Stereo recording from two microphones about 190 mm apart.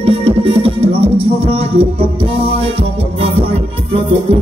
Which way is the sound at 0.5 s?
30° right (ahead or behind).